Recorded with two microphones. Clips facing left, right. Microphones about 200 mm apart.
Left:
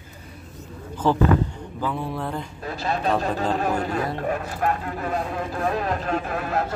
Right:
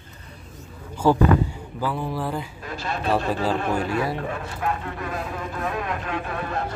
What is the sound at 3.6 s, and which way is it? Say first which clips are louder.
Speech: even; 40° left (ahead or behind).